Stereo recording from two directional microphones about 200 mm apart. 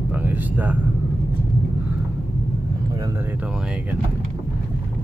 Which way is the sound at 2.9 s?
15° right (ahead or behind).